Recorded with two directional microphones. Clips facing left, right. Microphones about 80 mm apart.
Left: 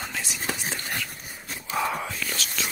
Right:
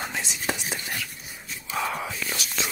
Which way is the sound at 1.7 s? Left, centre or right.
Centre.